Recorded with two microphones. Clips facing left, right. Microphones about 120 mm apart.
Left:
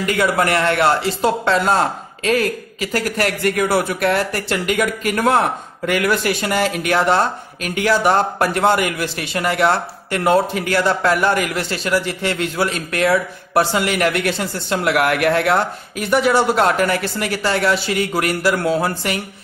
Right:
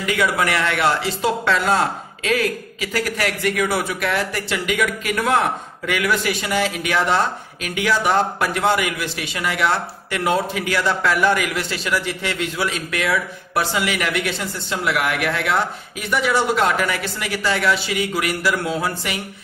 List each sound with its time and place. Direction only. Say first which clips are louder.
0.0 s a man's voice: left 3 dB; 45° left (ahead or behind)